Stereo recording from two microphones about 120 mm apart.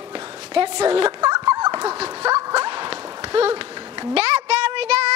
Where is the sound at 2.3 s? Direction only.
30° right (ahead or behind).